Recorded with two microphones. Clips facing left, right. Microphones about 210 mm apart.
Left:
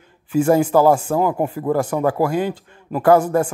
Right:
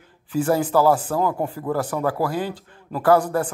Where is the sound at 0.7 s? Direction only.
20° left (ahead or behind).